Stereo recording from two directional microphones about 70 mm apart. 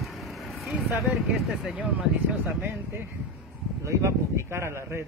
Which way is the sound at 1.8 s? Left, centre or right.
Centre.